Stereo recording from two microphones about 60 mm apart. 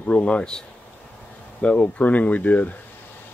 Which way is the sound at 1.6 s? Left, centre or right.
Left.